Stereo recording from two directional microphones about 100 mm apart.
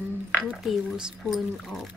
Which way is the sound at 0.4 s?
5° right (ahead or behind).